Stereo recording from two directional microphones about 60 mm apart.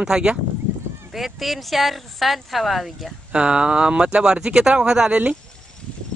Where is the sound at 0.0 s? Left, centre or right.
Centre.